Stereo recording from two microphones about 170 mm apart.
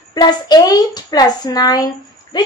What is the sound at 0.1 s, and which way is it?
Speech, 25° left (ahead or behind).